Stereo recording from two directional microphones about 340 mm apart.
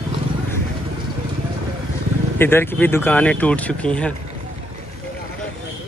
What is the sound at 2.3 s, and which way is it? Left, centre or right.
Speech, centre.